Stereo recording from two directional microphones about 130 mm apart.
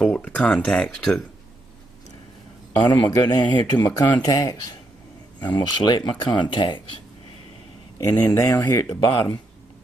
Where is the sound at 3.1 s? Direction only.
30° left (ahead or behind).